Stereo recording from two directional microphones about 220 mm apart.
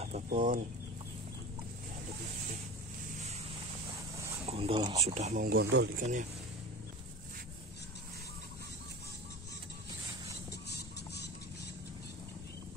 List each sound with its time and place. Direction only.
0.0 s speech: 35° right (ahead or behind)
4.5 s speech: 25° right (ahead or behind); by 6.0 s 50° right (ahead or behind)